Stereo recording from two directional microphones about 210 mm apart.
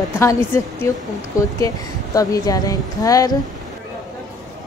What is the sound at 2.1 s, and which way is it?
Speech, 15° left (ahead or behind).